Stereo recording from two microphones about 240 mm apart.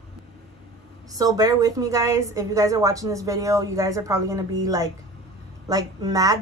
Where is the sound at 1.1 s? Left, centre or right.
Centre.